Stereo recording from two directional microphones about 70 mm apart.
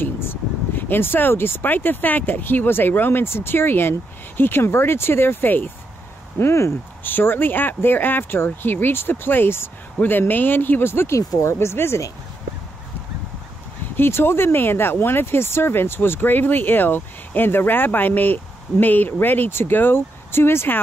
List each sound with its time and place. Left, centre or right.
0.0 s speech: left
6.3 s speech: left
13.9 s speech: left